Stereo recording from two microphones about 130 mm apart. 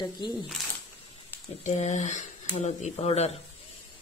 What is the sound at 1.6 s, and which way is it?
Speech, 65° left (ahead or behind).